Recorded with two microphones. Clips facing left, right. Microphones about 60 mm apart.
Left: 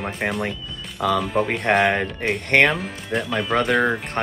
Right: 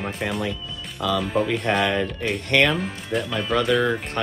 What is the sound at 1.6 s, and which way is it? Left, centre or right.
Speech, left.